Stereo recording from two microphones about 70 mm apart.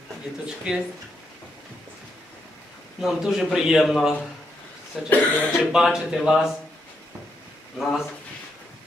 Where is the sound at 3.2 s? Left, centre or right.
Centre.